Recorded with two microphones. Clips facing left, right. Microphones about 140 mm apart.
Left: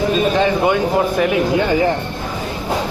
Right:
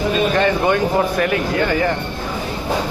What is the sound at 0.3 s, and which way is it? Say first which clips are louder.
Speech: left 1 dB; 10° left (ahead or behind).